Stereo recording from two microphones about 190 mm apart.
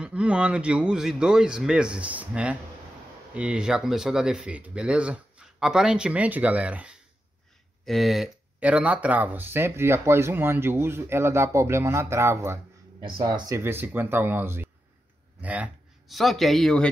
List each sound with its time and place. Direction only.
0.0 s speech: 5° right (ahead or behind); by 13.6 s 25° right (ahead or behind)
13.6 s speech: 10° right (ahead or behind)